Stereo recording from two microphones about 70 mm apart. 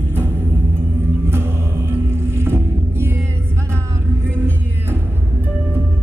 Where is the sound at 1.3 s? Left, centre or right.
Right.